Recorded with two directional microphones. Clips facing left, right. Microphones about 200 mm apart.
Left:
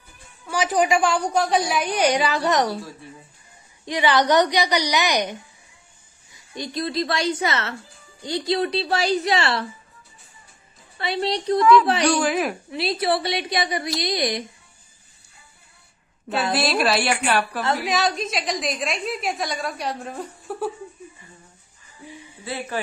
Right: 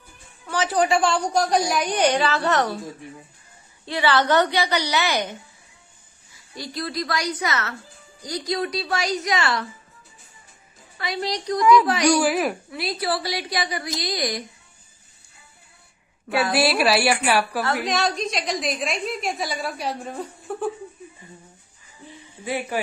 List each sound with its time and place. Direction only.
0.5 s a woman's voice: 10° left (ahead or behind)
3.8 s a woman's voice: 15° left (ahead or behind)
11.0 s speech: 30° left (ahead or behind)
12.1 s a woman's voice: 5° right (ahead or behind)
12.7 s speech: 25° left (ahead or behind)
16.5 s a woman's voice: 10° right (ahead or behind)
17.8 s a woman's voice: centre (ahead or behind)
22.4 s speech: 15° right (ahead or behind)